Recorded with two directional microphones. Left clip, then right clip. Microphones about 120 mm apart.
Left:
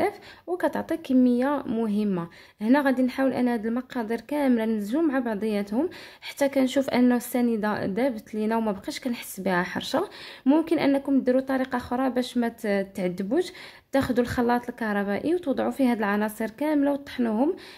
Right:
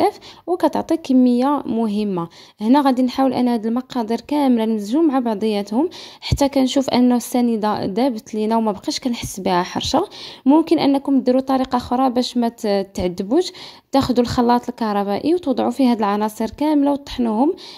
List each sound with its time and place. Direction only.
0.0 s speech: 50° right (ahead or behind)
2.6 s speech: 50° right (ahead or behind)
17.2 s speech: 30° right (ahead or behind)